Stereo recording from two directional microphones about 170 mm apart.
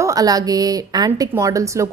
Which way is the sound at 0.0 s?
20° right (ahead or behind).